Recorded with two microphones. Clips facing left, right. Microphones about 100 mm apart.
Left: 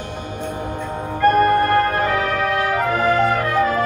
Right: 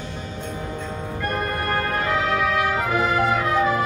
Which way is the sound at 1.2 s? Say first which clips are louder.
Left 12 dB; 60° left (ahead or behind).